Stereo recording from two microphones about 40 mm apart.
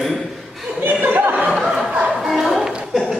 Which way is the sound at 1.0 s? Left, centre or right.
Right.